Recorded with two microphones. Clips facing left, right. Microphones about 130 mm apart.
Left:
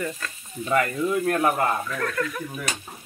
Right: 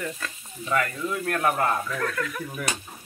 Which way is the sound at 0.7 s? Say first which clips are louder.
Left 4 dB; 30° left (ahead or behind).